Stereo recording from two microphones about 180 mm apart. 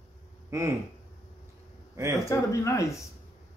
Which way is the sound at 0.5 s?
15° right (ahead or behind).